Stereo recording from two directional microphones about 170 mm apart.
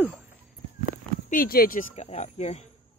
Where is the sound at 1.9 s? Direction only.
40° left (ahead or behind).